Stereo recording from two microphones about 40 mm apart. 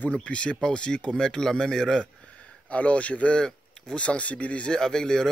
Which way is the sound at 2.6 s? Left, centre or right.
Left.